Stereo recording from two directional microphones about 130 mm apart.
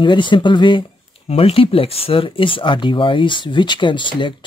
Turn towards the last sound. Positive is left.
turn(degrees=40)  # may be behind; listen again after turning